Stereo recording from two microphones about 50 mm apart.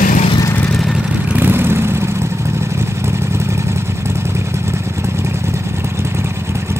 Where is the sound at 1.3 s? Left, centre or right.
Right.